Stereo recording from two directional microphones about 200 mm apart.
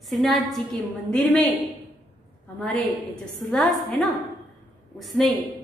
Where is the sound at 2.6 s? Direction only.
Centre (ahead or behind).